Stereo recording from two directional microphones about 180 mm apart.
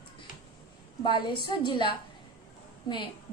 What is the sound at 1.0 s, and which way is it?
A woman's voice, 25° left (ahead or behind).